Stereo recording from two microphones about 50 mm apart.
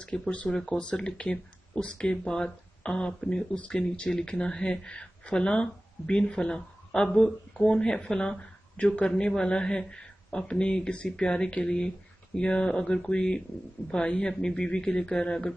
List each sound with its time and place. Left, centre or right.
0.1 s a man's voice: centre